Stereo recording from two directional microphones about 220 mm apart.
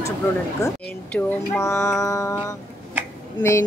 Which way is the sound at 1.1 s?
10° left (ahead or behind).